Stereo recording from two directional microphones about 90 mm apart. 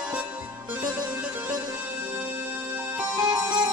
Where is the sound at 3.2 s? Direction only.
55° right (ahead or behind).